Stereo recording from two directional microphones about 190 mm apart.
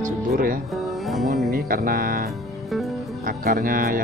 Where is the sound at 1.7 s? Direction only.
55° right (ahead or behind).